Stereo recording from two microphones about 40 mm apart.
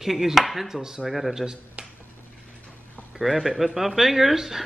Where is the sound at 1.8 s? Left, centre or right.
Right.